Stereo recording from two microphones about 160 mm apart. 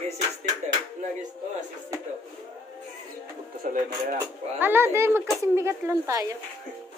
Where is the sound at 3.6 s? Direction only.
55° right (ahead or behind).